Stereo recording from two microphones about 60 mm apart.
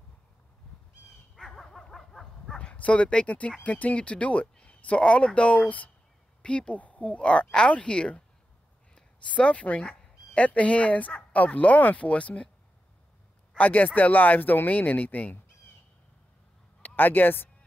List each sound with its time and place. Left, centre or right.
1.5 s dog: centre
2.6 s a woman's voice: centre
13.6 s speech: left
16.8 s speech: left